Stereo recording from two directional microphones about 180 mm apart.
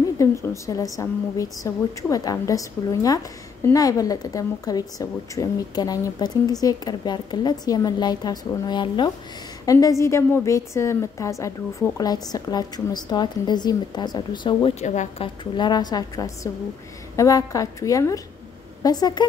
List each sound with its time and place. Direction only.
0.2 s a woman's voice: 15° left (ahead or behind)
14.8 s a woman's voice: 40° left (ahead or behind)
15.2 s a woman's voice: 25° left (ahead or behind)